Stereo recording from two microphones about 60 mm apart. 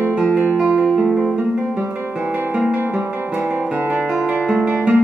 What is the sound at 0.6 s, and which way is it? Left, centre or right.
Music, centre.